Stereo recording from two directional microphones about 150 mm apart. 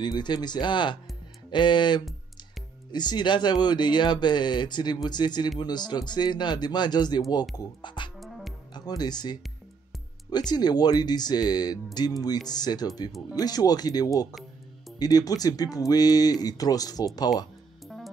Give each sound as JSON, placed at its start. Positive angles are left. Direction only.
{"t": 0.0, "sound": "speech", "side_deg": 30}
{"t": 17.8, "sound": "music", "side_deg": 0}